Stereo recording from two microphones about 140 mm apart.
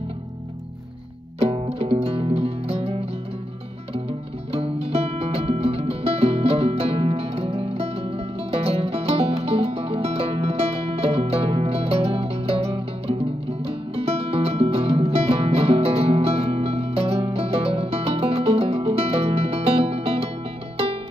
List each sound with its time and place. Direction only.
1.4 s music: 45° right (ahead or behind)
4.5 s music: 45° right (ahead or behind)